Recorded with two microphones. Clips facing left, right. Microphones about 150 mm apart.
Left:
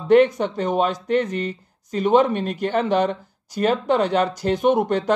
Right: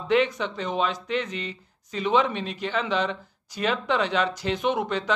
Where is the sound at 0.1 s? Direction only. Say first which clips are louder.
Left 8 dB; 50° left (ahead or behind).